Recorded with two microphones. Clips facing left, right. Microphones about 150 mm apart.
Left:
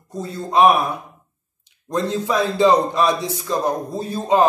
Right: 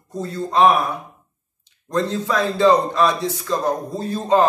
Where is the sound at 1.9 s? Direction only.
15° left (ahead or behind).